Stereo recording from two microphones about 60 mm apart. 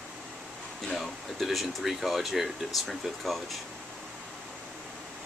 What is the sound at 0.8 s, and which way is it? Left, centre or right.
Speech, centre.